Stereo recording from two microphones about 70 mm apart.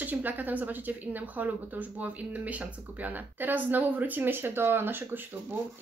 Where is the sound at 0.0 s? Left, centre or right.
Right.